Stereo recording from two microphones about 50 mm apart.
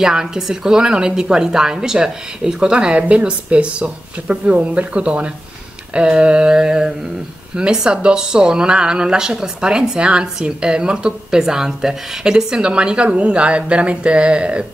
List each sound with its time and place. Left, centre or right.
0.0 s speech: centre
3.0 s speech: right